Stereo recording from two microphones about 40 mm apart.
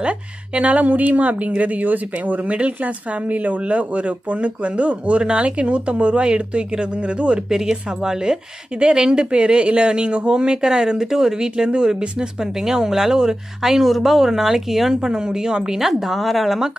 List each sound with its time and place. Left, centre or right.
0.6 s speech: right
2.5 s speech: right
7.4 s speech: centre
15.8 s speech: centre